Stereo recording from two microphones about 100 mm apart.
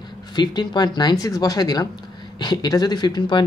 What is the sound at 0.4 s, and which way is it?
A woman's voice, 45° left (ahead or behind).